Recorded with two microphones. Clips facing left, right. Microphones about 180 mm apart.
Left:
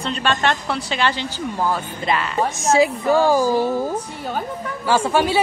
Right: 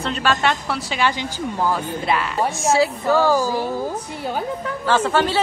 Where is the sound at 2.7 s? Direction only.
15° left (ahead or behind).